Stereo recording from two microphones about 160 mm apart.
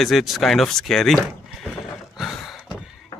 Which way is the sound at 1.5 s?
Centre (ahead or behind).